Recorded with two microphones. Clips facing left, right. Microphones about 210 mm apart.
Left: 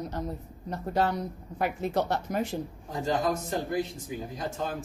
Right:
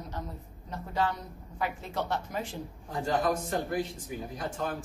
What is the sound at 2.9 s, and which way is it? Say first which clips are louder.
A man's voice: even; 20° left (ahead or behind).